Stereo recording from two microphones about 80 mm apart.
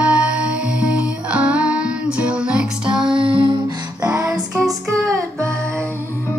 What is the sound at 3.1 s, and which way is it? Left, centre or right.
Music, right.